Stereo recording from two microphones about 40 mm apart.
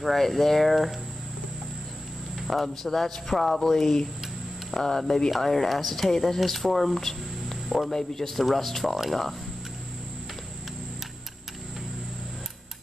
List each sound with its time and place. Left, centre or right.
0.0 s speech: centre
2.3 s a man's voice: centre